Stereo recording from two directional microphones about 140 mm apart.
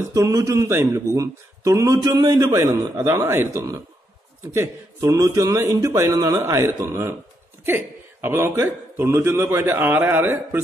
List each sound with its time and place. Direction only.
0.1 s a man's voice: 25° right (ahead or behind)